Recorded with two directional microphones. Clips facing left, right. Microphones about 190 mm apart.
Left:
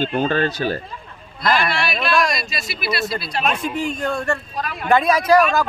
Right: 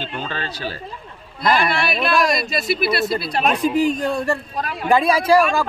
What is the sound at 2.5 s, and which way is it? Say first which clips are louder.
Speech: right 6 dB; 55° right (ahead or behind).